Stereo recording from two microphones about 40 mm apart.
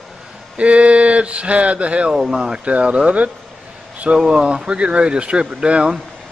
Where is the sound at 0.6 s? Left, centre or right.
Right.